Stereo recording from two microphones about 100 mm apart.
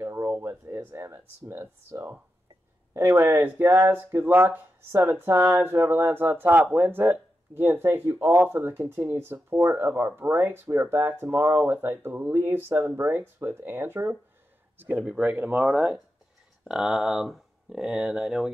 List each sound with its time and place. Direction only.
0.0 s speech: 25° right (ahead or behind); by 18.5 s 5° right (ahead or behind)